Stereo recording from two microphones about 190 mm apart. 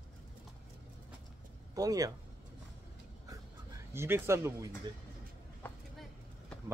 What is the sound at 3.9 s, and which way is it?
Speech, 15° right (ahead or behind).